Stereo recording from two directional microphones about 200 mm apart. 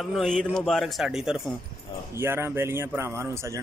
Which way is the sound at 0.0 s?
Centre (ahead or behind).